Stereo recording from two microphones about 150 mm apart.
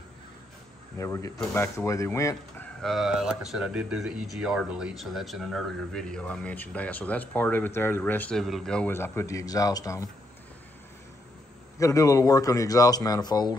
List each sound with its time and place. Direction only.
0.9 s speech: 20° left (ahead or behind)
2.8 s speech: centre (ahead or behind); by 10.0 s 25° left (ahead or behind)
11.8 s speech: 20° left (ahead or behind)